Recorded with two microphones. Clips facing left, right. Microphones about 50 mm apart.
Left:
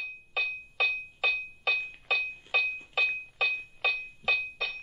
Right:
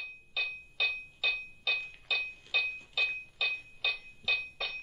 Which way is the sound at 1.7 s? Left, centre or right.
Left.